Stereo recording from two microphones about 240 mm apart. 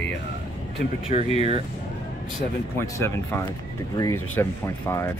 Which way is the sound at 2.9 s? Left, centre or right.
Centre.